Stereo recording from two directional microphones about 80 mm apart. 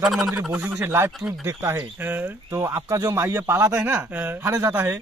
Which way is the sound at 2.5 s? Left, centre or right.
Right.